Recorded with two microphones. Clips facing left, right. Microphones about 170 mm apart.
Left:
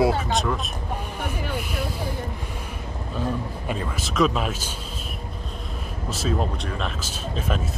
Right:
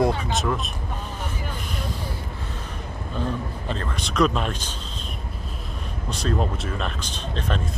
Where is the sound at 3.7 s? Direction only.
5° left (ahead or behind).